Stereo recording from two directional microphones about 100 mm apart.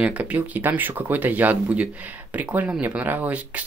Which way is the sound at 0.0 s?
15° right (ahead or behind).